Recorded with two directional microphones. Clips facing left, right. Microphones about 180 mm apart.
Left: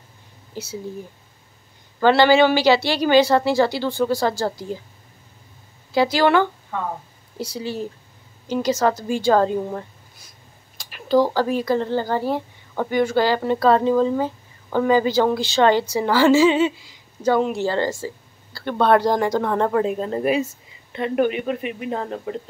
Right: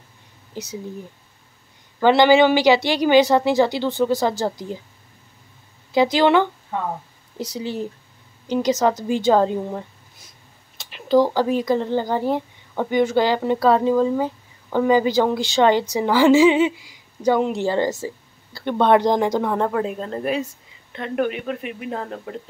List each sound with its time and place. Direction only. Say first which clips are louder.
0.5 s speech: even; 20° right (ahead or behind)
2.0 s speech: right 1 dB; 15° right (ahead or behind)
5.9 s a woman's voice: right 1 dB; 20° right (ahead or behind)
10.8 s a sound: right 1 dB; 20° right (ahead or behind)
11.3 s speech: right 1 dB; 15° right (ahead or behind)
19.5 s speech: left 2 dB; centre (ahead or behind)